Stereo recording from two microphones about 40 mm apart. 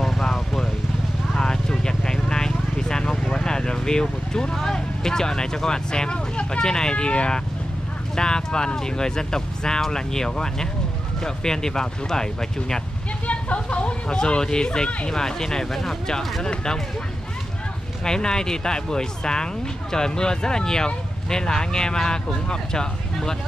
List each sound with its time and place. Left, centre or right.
0.0 s vehicle: centre
1.3 s vehicle: centre
8.2 s speech: centre
13.3 s speech: left
14.0 s speech: left
16.4 s speech: centre
18.0 s speech: centre